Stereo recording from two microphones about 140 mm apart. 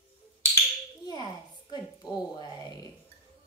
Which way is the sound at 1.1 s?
30° left (ahead or behind).